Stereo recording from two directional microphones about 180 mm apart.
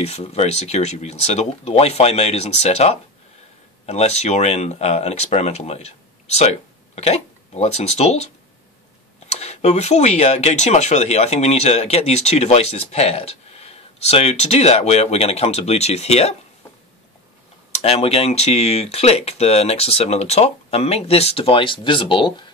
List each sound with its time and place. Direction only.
0.0 s speech: 35° left (ahead or behind)
9.3 s speech: 35° left (ahead or behind)
17.7 s speech: 35° left (ahead or behind)